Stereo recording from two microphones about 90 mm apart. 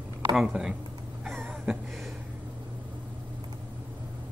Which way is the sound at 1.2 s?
Centre (ahead or behind).